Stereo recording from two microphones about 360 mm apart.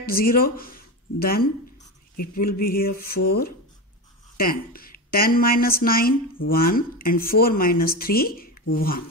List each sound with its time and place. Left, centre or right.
0.0 s a woman's voice: left